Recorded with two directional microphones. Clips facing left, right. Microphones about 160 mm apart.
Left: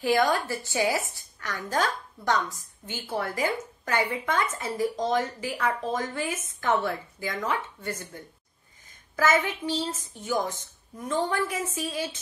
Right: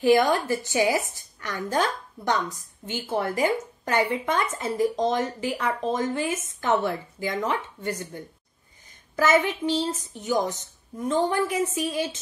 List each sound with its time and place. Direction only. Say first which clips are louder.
0.0 s a woman's voice: right 4 dB; 20° right (ahead or behind)